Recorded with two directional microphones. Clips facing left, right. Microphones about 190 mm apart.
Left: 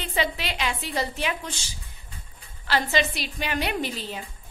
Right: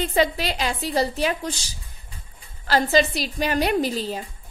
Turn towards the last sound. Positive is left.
turn(degrees=-40)  # may be behind; listen again after turning